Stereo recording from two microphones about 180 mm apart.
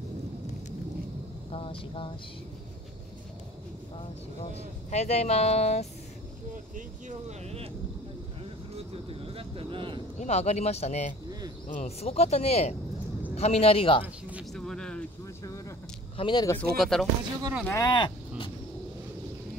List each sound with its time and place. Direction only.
1.5 s vehicle: 30° left (ahead or behind)
4.9 s speech: 35° left (ahead or behind)
6.5 s speech: 45° right (ahead or behind)
8.7 s speech: 30° right (ahead or behind)
10.1 s speech: 40° left (ahead or behind)
14.5 s speech: 5° left (ahead or behind)
16.2 s speech: 25° left (ahead or behind)
16.7 s speech: centre (ahead or behind)
17.4 s speech: 15° right (ahead or behind)
17.6 s speech: 20° left (ahead or behind)